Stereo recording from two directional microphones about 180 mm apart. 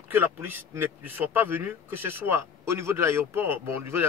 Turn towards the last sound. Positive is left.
turn(degrees=-15)  # may be behind; listen again after turning